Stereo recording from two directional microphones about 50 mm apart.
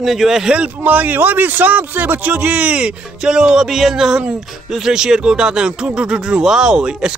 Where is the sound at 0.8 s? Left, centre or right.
Right.